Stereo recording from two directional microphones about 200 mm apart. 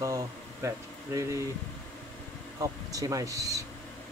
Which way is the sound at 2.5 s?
15° right (ahead or behind).